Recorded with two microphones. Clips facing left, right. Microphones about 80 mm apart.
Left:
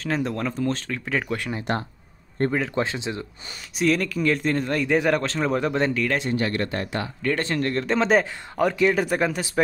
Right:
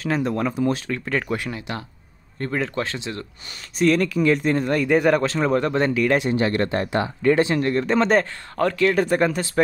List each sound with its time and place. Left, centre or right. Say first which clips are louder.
0.0 s speech: right 3 dB; centre
2.4 s speech: left 5 dB; left
2.7 s speech: left 1 dB; left
3.7 s speech: right 4 dB; centre
6.0 s speech: right 4 dB; centre
7.3 s speech: right 5 dB; centre